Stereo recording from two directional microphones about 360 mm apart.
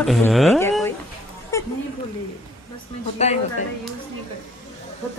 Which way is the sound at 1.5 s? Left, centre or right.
Centre.